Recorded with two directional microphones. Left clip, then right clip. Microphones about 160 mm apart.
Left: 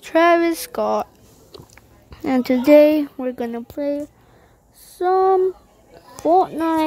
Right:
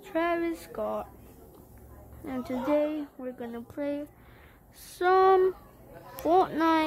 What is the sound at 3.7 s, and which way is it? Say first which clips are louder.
Speech: left 8 dB; 45° left (ahead or behind).